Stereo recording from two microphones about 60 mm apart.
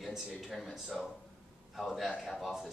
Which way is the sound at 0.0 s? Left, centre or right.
Centre.